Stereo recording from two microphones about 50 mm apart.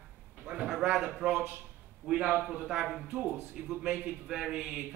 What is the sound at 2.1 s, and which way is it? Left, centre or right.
Speech, right.